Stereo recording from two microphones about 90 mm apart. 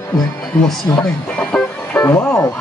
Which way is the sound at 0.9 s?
25° left (ahead or behind).